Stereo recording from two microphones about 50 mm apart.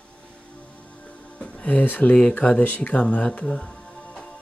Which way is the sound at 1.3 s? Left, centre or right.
Left.